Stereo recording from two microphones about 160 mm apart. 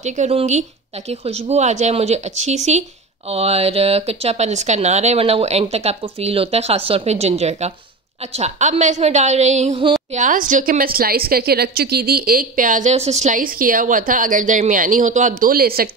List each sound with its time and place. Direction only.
0.0 s a woman's voice: 45° right (ahead or behind); by 15.9 s 70° right (ahead or behind)